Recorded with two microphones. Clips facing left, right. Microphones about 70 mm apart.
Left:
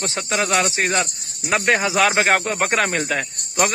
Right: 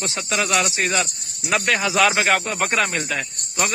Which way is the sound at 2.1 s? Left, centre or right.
Left.